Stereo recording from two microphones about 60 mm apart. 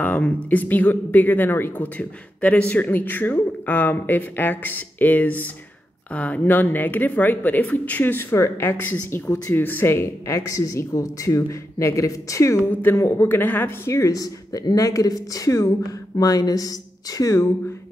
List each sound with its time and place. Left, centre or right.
0.0 s speech: left
2.0 s speech: left
10.0 s speech: left
13.3 s speech: left
13.8 s speech: left
14.1 s speech: left
17.2 s speech: left